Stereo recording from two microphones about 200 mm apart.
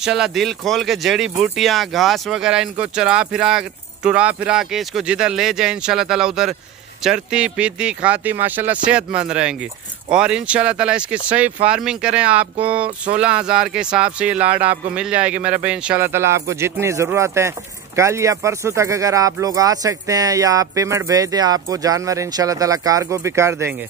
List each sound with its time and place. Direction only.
0.0 s speech: 5° right (ahead or behind)